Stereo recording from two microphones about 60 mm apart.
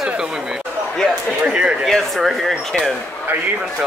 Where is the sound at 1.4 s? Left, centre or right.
Centre.